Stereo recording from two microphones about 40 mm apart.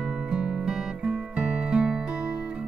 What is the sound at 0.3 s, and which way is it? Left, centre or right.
Music, centre.